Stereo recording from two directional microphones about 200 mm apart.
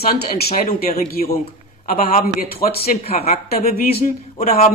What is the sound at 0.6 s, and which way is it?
Speech, 50° left (ahead or behind).